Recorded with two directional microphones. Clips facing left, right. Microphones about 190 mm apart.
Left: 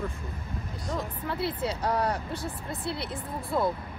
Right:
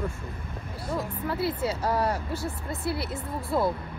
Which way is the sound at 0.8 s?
5° right (ahead or behind).